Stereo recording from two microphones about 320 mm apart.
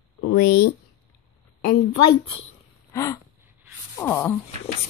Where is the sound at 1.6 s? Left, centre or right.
Left.